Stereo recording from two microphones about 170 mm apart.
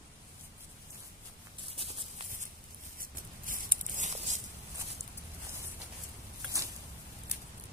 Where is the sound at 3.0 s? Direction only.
55° right (ahead or behind).